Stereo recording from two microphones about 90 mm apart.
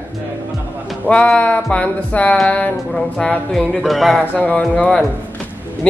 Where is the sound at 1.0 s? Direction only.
15° left (ahead or behind).